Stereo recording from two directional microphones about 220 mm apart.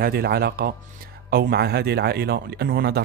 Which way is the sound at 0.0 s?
45° right (ahead or behind).